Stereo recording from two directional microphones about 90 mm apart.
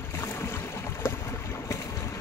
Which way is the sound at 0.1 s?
30° left (ahead or behind).